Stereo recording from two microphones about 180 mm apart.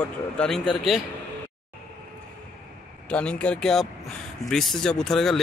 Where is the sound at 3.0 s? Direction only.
5° left (ahead or behind).